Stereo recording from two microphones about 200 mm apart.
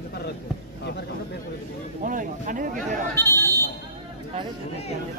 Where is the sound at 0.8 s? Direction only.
55° left (ahead or behind).